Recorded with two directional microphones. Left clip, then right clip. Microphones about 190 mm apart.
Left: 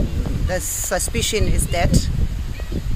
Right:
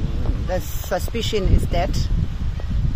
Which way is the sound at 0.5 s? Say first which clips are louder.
Left 1 dB; 10° left (ahead or behind).